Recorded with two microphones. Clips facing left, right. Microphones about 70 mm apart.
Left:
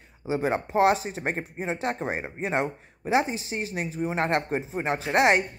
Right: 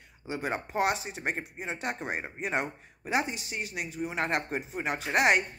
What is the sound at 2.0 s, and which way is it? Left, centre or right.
Speech, left.